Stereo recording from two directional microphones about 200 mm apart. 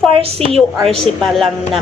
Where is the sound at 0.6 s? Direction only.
Centre (ahead or behind).